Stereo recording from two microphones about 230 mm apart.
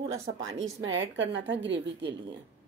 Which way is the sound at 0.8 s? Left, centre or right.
Right.